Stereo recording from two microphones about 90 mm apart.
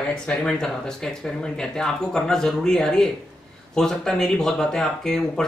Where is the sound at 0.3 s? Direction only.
10° left (ahead or behind).